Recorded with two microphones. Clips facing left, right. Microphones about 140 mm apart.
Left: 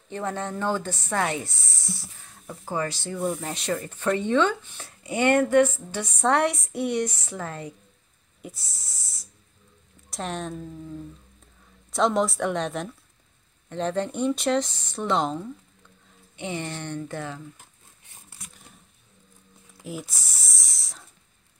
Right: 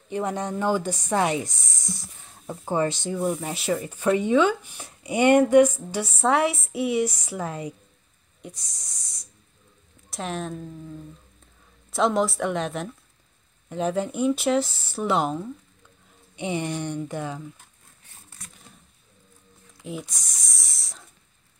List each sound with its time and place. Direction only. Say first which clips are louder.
0.1 s speech: right 3 dB; 15° right (ahead or behind)
3.2 s speech: even; 5° right (ahead or behind)
8.4 s a woman's voice: even; 5° left (ahead or behind); by 17.4 s 15° right (ahead or behind)
19.8 s speech: right 1 dB; centre (ahead or behind)